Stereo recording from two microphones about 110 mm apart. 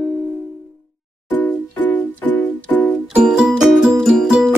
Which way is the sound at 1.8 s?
15° left (ahead or behind).